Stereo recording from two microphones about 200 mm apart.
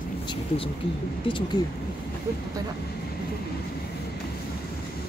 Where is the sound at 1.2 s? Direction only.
25° left (ahead or behind).